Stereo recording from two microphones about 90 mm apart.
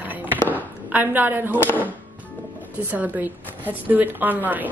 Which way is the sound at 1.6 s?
20° left (ahead or behind).